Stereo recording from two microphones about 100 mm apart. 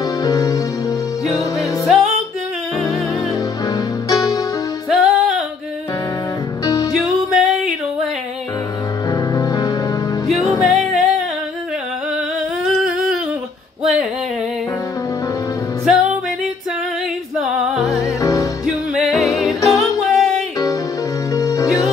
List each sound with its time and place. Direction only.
0.2 s music: 35° left (ahead or behind)
1.6 s music: centre (ahead or behind)
3.6 s music: 35° left (ahead or behind)
4.8 s music: centre (ahead or behind)
6.6 s music: 40° left (ahead or behind)
6.9 s music: 5° right (ahead or behind)
9.1 s music: 35° left (ahead or behind)
10.2 s music: centre (ahead or behind)
15.8 s music: 5° right (ahead or behind)
18.0 s music: 35° left (ahead or behind)
18.7 s music: 5° right (ahead or behind)
21.3 s music: 35° left (ahead or behind)